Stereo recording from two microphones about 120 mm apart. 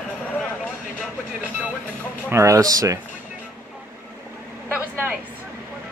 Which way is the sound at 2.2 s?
25° right (ahead or behind).